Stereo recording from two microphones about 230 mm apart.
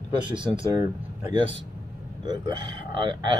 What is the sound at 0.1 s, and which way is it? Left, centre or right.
Speech, right.